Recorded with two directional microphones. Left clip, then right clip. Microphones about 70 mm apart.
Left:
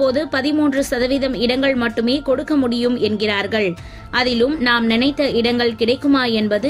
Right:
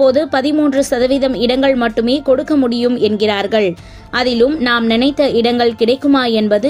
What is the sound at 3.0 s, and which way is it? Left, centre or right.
A woman's voice, right.